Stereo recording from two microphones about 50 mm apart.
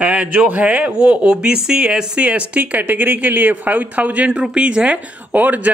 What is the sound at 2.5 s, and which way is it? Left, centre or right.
A man's voice, right.